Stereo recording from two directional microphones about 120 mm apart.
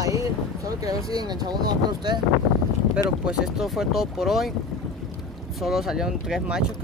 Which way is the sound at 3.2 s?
5° right (ahead or behind).